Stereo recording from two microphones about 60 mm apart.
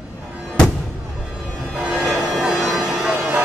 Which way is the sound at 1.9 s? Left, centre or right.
Centre.